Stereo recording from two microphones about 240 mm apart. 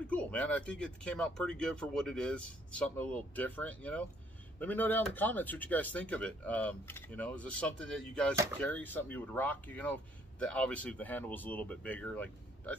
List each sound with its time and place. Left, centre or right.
0.0 s speech: centre